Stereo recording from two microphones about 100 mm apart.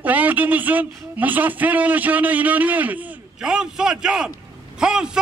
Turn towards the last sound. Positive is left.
turn(degrees=-5)  # may be behind; listen again after turning